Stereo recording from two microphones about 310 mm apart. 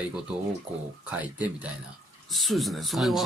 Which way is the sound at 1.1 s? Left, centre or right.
Centre.